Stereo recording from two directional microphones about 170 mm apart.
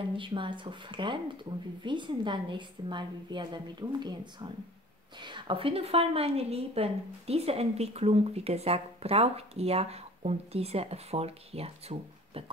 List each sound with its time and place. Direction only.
0.1 s a woman's voice: 30° right (ahead or behind)